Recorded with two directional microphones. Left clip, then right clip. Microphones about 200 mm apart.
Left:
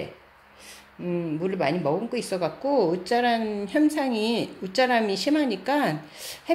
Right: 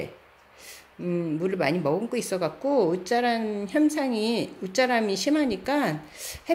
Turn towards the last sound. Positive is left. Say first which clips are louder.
# left 1 dB
turn(degrees=-15)  # may be behind; listen again after turning